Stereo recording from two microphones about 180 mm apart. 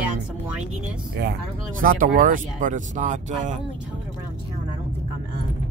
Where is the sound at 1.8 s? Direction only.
50° right (ahead or behind).